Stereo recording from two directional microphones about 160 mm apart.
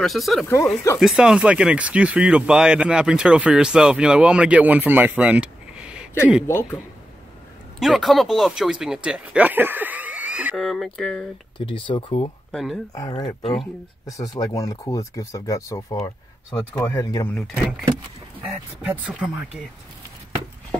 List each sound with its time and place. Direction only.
0.0 s speech: centre (ahead or behind)
6.4 s speech: 15° left (ahead or behind)
7.8 s speech: centre (ahead or behind)
11.5 s speech: 30° left (ahead or behind)
12.5 s speech: centre (ahead or behind)
12.9 s speech: 25° left (ahead or behind)
14.0 s speech: 20° left (ahead or behind)
17.3 s speech: 5° left (ahead or behind)
18.9 s speech: 5° right (ahead or behind)